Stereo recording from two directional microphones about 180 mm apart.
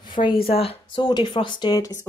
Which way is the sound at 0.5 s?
30° left (ahead or behind).